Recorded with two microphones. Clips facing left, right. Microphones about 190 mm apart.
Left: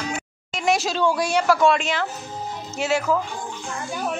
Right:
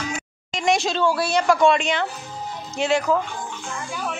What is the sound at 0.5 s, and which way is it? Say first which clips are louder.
Speech: right 1 dB; 5° left (ahead or behind).